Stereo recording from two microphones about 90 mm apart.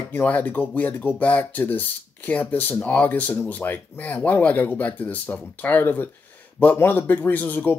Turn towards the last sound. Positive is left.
turn(degrees=20)  # may be behind; listen again after turning